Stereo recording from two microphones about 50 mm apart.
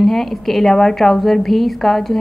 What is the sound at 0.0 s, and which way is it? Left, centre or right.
A woman's voice, centre.